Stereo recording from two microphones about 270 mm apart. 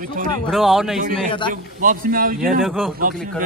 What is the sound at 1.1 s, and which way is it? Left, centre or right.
Speech, centre.